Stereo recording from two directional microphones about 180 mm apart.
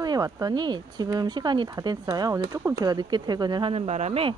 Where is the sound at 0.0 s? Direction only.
20° right (ahead or behind).